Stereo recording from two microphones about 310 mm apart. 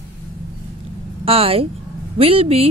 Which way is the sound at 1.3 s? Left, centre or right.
Centre.